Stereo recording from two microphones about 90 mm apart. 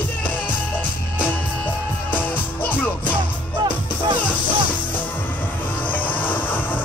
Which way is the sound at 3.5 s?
60° right (ahead or behind).